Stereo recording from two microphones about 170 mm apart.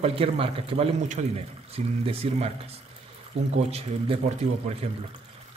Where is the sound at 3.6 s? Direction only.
40° right (ahead or behind).